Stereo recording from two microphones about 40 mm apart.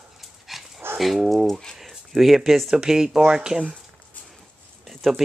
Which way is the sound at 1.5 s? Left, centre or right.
Centre.